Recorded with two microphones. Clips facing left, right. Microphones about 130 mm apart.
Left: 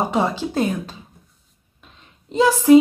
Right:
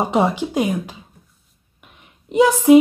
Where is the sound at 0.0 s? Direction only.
20° right (ahead or behind).